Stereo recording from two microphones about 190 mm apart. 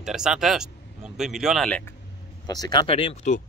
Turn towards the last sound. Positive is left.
turn(degrees=35)  # may be behind; listen again after turning